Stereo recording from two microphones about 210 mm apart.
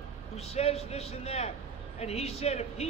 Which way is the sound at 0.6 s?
30° left (ahead or behind).